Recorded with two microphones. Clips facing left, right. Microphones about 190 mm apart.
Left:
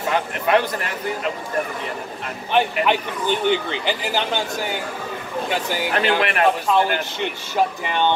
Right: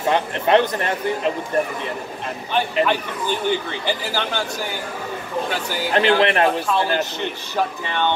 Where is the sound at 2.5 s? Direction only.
15° left (ahead or behind).